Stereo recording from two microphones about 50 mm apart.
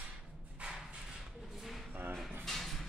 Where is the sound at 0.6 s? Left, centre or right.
Right.